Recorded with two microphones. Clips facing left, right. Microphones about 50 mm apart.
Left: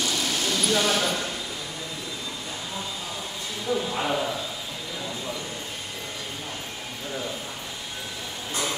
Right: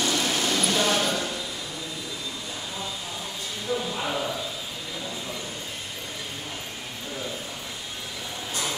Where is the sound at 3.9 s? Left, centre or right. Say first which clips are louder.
Left 3 dB; centre.